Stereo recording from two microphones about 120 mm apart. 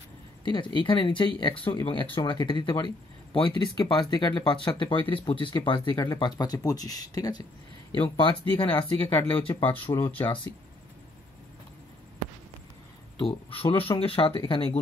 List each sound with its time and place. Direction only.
0.5 s speech: 40° left (ahead or behind)
8.0 s speech: 45° left (ahead or behind)
13.2 s speech: 45° left (ahead or behind)